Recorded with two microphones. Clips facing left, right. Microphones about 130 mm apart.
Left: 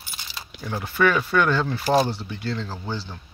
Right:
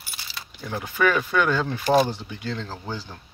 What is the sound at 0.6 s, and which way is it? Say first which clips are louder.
Speech: left 1 dB; 10° left (ahead or behind).